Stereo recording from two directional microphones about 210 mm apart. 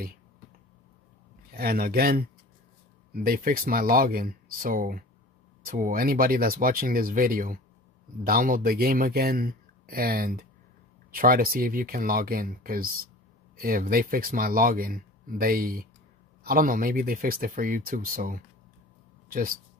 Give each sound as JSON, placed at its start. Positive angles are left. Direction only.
{"t": 1.5, "sound": "speech", "side_deg": -45}